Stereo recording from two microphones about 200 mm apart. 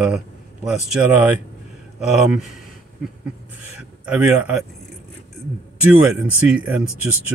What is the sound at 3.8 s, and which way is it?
Speech, 10° right (ahead or behind).